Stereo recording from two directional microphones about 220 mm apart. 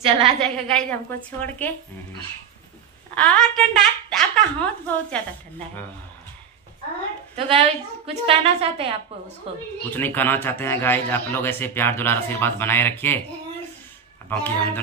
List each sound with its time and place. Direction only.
0.4 s a woman's voice: 5° left (ahead or behind)
3.2 s speech: centre (ahead or behind)
7.3 s a woman's voice: 25° right (ahead or behind)
9.9 s a man's voice: 10° left (ahead or behind)
14.3 s a man's voice: 10° left (ahead or behind)